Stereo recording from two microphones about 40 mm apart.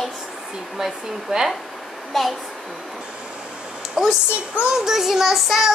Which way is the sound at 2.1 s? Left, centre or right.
Centre.